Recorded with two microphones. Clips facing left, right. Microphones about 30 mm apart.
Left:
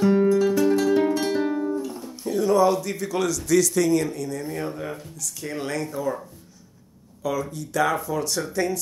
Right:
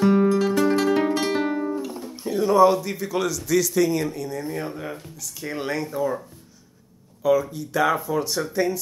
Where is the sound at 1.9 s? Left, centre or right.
Centre.